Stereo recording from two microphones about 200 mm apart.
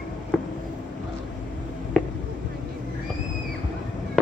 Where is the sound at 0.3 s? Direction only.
5° left (ahead or behind).